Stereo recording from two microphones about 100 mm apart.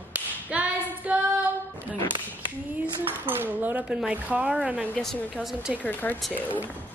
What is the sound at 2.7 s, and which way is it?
Speech, 20° right (ahead or behind).